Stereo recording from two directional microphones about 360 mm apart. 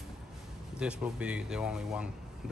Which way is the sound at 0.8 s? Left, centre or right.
Centre.